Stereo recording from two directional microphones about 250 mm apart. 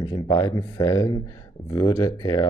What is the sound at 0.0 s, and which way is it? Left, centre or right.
Speech, centre.